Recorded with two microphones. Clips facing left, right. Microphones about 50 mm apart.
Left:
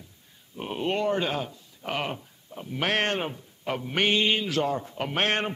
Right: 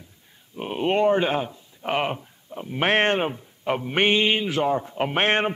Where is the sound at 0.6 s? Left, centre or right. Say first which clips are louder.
Right 6 dB; right.